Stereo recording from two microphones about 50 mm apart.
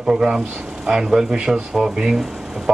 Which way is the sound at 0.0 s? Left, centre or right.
Centre.